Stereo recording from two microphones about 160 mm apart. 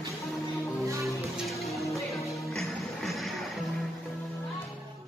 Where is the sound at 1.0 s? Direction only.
Centre (ahead or behind).